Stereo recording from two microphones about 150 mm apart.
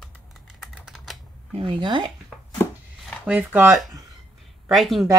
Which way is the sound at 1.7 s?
30° right (ahead or behind).